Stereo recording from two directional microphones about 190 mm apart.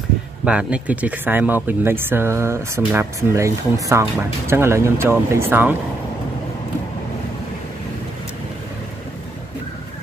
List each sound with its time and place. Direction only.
0.5 s speech: 5° right (ahead or behind)